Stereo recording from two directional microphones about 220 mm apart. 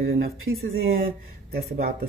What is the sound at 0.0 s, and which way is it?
Speech, 45° right (ahead or behind).